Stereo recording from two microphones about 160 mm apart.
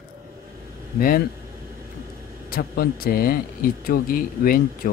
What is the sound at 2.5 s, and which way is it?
Speech, 65° left (ahead or behind).